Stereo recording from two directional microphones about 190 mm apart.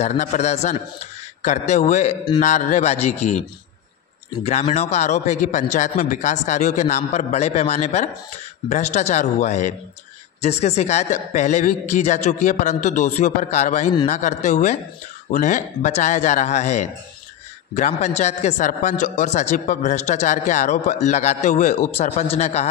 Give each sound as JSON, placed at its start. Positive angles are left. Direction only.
{"t": 0.0, "sound": "a man's voice", "side_deg": 35}